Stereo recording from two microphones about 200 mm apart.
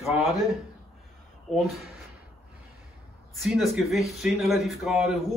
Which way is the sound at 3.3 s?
Centre (ahead or behind).